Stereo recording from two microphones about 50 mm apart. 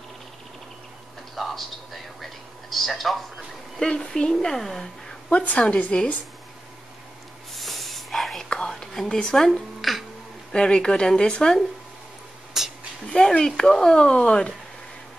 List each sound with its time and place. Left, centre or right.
1.3 s a sound: centre
3.8 s a woman's voice: centre
5.3 s a woman's voice: left
7.5 s snort: centre
8.5 s whispering: centre
9.2 s a woman's voice: centre
9.5 s music: centre
10.5 s a woman's voice: centre
12.6 s a sound: centre
13.2 s a sound: centre
13.6 s a woman's voice: centre